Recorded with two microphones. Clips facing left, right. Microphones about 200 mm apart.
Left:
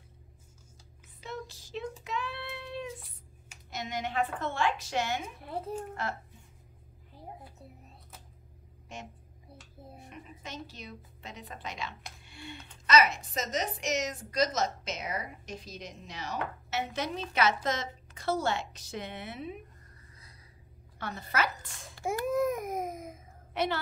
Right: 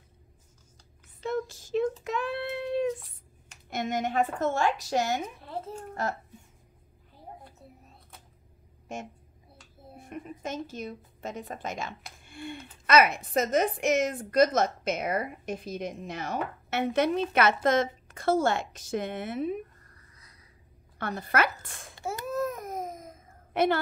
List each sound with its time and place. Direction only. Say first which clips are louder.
1.2 s a sound: right 10 dB; 50° right (ahead or behind)
2.0 s child singing: right 6 dB; 50° right (ahead or behind)
3.7 s a woman's voice: right 5 dB; 50° right (ahead or behind)
5.5 s speech: left 6 dB; 5° left (ahead or behind)
8.9 s a woman's voice: right 6 dB; 50° right (ahead or behind)
12.2 s a sound: right 9 dB; 50° right (ahead or behind)
12.8 s a woman's voice: right 3 dB; 55° right (ahead or behind)
21.0 s a woman's voice: right 5 dB; 60° right (ahead or behind)
22.0 s baby cry: left 2 dB; 15° left (ahead or behind)
23.5 s speech: right 6 dB; 50° right (ahead or behind)